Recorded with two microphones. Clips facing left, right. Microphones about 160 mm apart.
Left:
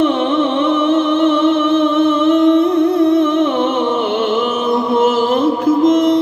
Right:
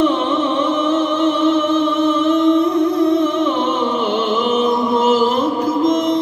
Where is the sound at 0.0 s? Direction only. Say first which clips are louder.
Left 2 dB; 55° left (ahead or behind).